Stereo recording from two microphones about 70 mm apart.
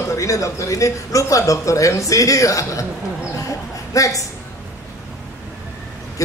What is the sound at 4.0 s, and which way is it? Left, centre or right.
Speech, left.